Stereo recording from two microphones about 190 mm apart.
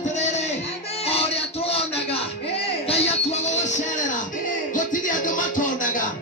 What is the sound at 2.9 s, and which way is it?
Music, 35° left (ahead or behind).